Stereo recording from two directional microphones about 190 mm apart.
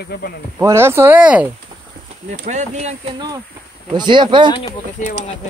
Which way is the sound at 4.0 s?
25° right (ahead or behind).